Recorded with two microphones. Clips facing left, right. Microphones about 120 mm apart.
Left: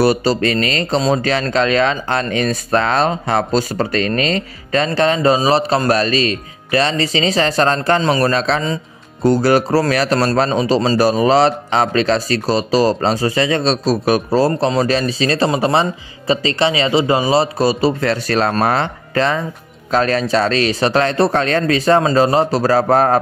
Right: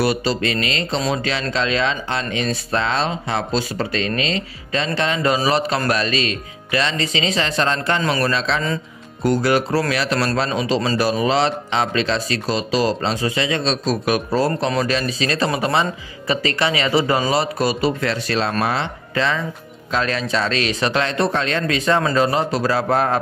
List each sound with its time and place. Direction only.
0.0 s a man's voice: 40° left (ahead or behind)